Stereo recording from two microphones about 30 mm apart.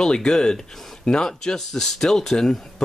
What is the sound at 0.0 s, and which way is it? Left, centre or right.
Speech, left.